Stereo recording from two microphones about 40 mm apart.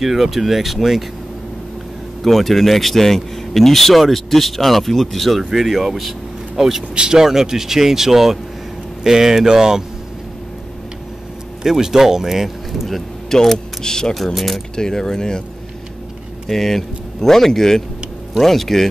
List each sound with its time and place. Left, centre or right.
0.0 s speech: centre
2.2 s speech: centre
11.6 s speech: centre
12.8 s speech: centre
14.1 s speech: centre
14.8 s speech: centre
16.4 s speech: centre